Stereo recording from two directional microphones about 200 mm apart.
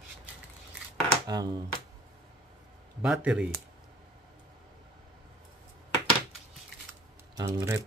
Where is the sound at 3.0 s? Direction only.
5° right (ahead or behind).